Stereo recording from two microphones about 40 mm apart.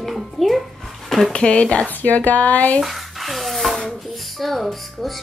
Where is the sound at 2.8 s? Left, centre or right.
Centre.